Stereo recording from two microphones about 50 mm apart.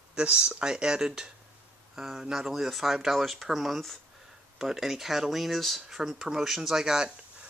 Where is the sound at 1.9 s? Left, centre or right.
Centre.